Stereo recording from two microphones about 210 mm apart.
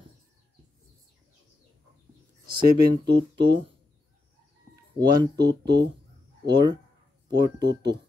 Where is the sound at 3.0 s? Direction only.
55° right (ahead or behind).